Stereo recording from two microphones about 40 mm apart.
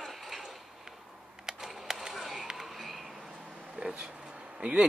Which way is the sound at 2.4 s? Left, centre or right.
Centre.